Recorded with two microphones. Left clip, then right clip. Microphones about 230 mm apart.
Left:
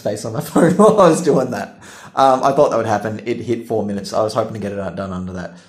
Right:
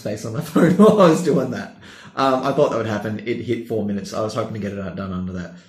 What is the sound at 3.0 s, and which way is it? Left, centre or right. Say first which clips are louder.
Speech: left 3 dB; left.